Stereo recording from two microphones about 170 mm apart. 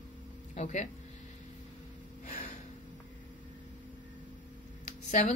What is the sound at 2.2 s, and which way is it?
Gasp, 50° left (ahead or behind).